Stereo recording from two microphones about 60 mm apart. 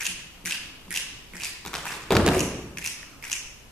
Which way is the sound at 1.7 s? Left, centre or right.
Centre.